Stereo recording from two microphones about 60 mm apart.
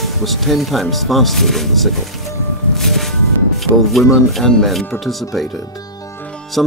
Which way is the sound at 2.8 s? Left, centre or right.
Centre.